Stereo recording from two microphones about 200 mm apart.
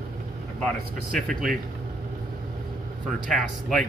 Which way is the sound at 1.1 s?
Centre (ahead or behind).